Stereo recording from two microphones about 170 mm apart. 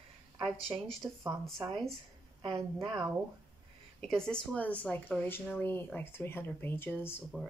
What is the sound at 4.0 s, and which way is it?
Speech, 5° left (ahead or behind).